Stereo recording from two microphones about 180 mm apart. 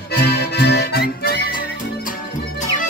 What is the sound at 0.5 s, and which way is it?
Music, 60° left (ahead or behind).